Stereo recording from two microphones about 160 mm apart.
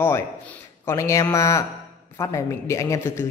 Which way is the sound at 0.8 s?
20° left (ahead or behind).